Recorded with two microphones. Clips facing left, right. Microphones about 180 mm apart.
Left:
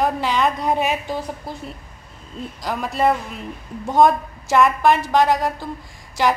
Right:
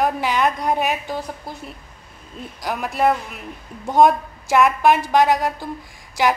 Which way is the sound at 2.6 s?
5° right (ahead or behind).